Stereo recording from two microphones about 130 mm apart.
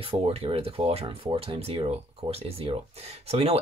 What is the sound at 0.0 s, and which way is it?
Speech, 45° right (ahead or behind).